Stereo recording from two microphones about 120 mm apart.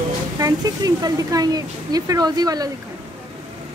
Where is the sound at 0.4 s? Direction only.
30° right (ahead or behind).